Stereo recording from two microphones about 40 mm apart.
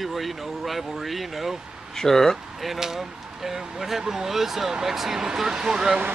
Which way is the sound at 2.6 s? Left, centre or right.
Centre.